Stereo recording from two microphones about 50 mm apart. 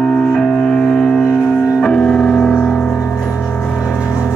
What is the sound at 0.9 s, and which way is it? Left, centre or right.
Music, centre.